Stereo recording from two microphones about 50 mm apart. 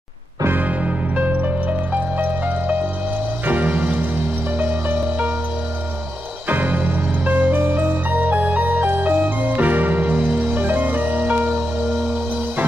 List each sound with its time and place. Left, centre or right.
0.8 s music: right
6.5 s music: right